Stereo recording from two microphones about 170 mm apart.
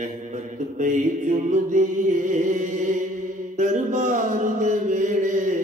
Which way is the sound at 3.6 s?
45° right (ahead or behind).